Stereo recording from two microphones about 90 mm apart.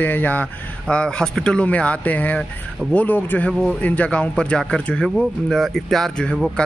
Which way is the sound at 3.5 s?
5° left (ahead or behind).